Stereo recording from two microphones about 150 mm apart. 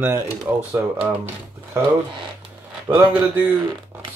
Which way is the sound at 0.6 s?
10° right (ahead or behind).